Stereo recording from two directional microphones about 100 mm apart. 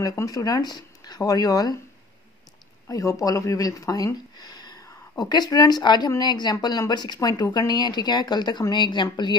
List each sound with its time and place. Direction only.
0.0 s speech: 35° left (ahead or behind)
2.9 s speech: 35° left (ahead or behind)